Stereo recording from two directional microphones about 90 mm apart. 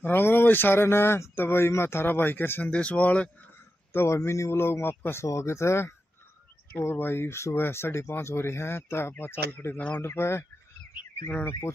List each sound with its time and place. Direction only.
0.0 s speech: 25° left (ahead or behind)
3.9 s speech: 30° left (ahead or behind)